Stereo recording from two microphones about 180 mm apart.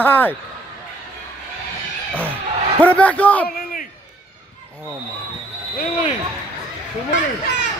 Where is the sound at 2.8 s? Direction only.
10° left (ahead or behind).